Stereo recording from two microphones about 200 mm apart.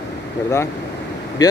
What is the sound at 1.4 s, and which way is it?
Speech, 20° left (ahead or behind).